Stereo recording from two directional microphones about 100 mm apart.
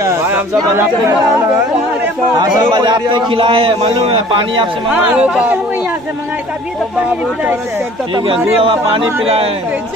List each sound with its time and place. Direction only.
0.0 s speech: 30° right (ahead or behind)
2.7 s a man's voice: 45° right (ahead or behind); by 4.2 s 75° right (ahead or behind)
4.9 s speech: 15° right (ahead or behind)
8.6 s speech: 65° right (ahead or behind)